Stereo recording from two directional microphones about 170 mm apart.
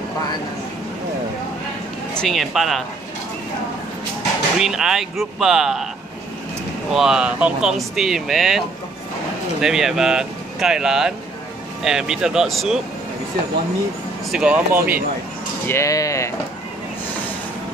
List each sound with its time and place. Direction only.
2.1 s speech: centre (ahead or behind)
4.6 s speech: 5° right (ahead or behind)
6.9 s speech: 5° right (ahead or behind)
14.3 s speech: 5° right (ahead or behind)
15.6 s speech: 15° left (ahead or behind)